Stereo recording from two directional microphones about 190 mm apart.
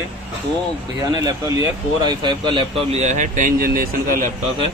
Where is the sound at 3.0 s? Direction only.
40° right (ahead or behind).